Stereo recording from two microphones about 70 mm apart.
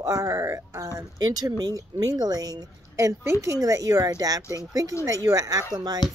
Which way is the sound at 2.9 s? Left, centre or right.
Right.